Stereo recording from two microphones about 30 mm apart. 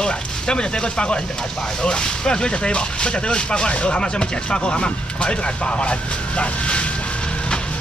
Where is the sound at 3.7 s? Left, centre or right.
Left.